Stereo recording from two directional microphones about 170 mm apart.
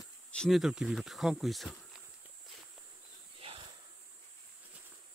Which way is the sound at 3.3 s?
30° right (ahead or behind).